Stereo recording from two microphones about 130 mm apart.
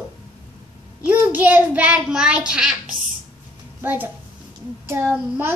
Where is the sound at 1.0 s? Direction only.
10° right (ahead or behind).